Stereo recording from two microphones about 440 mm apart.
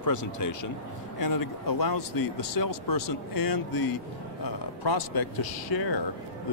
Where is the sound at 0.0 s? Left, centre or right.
Left.